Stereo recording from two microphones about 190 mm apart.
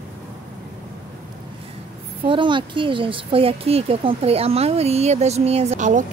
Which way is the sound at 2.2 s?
25° right (ahead or behind).